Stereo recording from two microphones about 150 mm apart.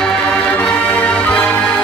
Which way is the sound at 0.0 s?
5° left (ahead or behind).